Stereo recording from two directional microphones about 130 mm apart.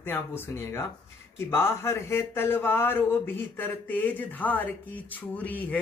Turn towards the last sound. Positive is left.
turn(degrees=10)  # may be behind; listen again after turning